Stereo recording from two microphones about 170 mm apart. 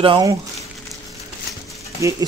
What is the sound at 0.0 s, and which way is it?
Speech, 30° right (ahead or behind).